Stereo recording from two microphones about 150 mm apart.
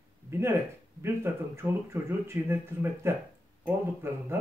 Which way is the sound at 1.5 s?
15° right (ahead or behind).